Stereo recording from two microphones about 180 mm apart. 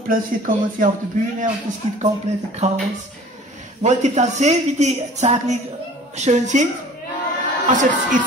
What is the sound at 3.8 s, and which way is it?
Speech, 40° right (ahead or behind).